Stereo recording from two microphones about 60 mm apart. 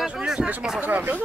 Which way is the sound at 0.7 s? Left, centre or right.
Right.